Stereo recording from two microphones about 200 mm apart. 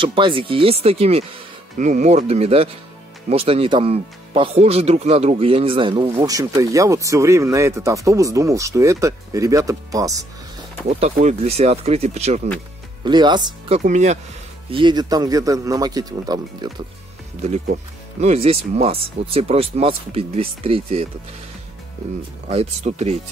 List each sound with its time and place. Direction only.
0.0 s speech: 25° right (ahead or behind)
10.9 s speech: 30° right (ahead or behind)
13.0 s speech: 20° right (ahead or behind)
14.7 s speech: 25° right (ahead or behind)
18.2 s speech: 30° right (ahead or behind)
22.5 s speech: 30° right (ahead or behind)